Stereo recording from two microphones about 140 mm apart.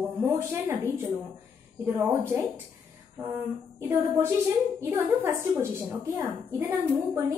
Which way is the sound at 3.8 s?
20° right (ahead or behind).